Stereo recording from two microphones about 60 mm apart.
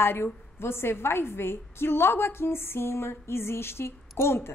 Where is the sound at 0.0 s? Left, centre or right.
Left.